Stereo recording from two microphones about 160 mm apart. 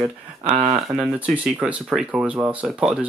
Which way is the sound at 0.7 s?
Centre (ahead or behind).